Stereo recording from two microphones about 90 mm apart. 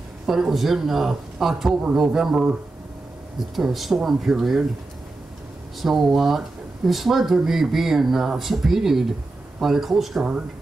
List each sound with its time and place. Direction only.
0.3 s speech: 5° right (ahead or behind)
5.8 s speech: centre (ahead or behind)